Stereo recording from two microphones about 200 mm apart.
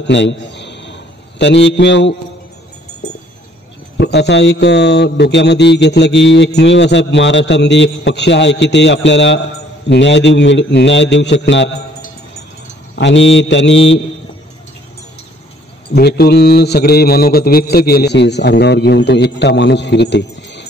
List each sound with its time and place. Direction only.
0.0 s a sound: 65° left (ahead or behind)
1.4 s speech: 60° left (ahead or behind)
4.0 s speech: 55° left (ahead or behind)
12.9 s speech: 65° left (ahead or behind)
15.9 s speech: 55° left (ahead or behind)